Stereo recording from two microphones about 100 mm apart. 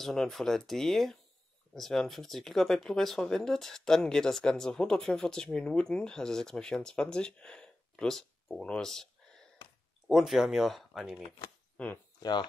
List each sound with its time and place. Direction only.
0.0 s speech: 5° left (ahead or behind)
11.2 s speech: 60° left (ahead or behind)
11.7 s a sound: 15° left (ahead or behind)
12.2 s speech: 45° left (ahead or behind)